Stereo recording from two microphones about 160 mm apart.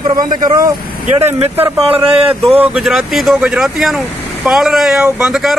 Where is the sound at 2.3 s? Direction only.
10° right (ahead or behind).